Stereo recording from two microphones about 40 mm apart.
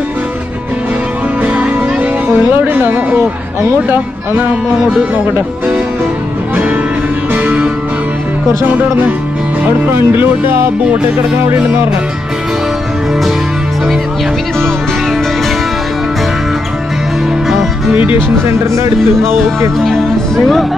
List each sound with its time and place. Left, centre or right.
2.2 s music: right
9.7 s speech: right
17.9 s speech: right
19.8 s speech: centre